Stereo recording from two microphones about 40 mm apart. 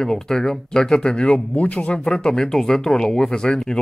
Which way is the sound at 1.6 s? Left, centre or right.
Left.